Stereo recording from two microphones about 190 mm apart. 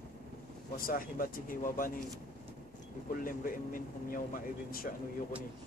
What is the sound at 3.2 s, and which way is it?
Speech, 45° left (ahead or behind).